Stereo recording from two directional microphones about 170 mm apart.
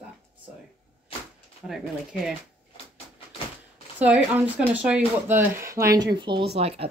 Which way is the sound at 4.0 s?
5° right (ahead or behind).